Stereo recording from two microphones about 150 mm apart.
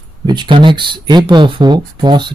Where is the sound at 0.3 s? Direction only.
30° right (ahead or behind).